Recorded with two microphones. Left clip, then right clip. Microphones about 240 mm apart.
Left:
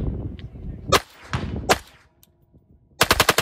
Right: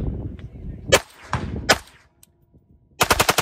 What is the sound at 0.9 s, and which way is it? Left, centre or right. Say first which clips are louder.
Arrow: right 2 dB; right.